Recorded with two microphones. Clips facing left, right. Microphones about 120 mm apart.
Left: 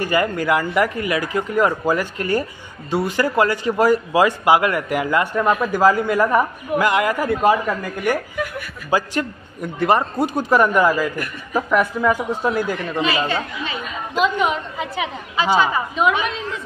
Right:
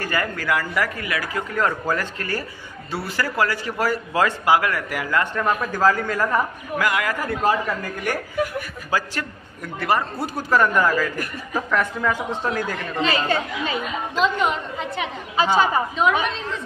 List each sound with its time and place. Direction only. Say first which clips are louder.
0.0 s a woman's voice: left 6 dB; 20° left (ahead or behind)
15.5 s a woman's voice: left 2 dB; 40° right (ahead or behind)